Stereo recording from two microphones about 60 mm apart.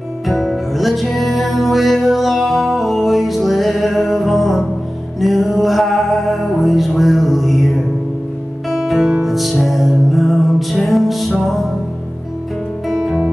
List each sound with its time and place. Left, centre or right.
0.3 s music: centre
12.8 s music: centre